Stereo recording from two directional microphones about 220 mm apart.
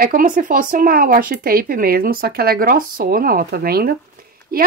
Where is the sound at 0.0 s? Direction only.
40° right (ahead or behind).